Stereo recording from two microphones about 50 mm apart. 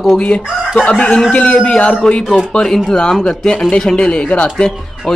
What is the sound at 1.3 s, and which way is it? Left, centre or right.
Speech, left.